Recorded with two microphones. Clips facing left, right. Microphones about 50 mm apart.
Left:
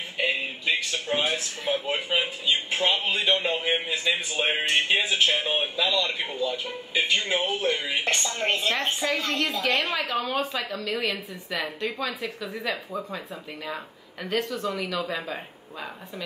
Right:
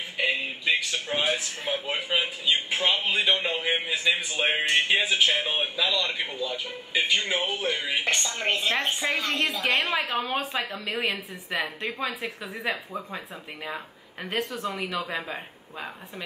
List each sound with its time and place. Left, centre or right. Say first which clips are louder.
0.2 s a man's voice: even; centre
9.6 s a woman's voice: left 1 dB; centre
10.0 s a woman's voice: left 1 dB; right